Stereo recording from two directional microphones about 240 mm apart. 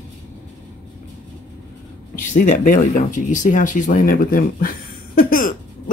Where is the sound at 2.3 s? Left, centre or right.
Left.